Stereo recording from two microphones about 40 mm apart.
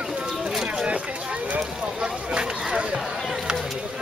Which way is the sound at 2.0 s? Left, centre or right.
Right.